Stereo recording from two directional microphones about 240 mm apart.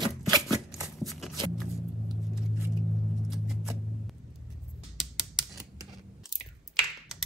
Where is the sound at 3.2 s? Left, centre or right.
Centre.